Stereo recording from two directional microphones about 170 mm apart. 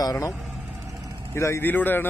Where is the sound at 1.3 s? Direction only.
15° left (ahead or behind).